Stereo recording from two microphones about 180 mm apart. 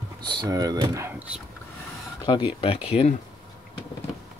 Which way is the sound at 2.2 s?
25° left (ahead or behind).